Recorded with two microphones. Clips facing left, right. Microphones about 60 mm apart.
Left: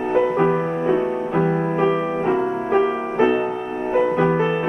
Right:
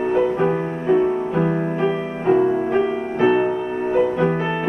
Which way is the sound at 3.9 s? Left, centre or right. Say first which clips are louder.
Left 1 dB; left.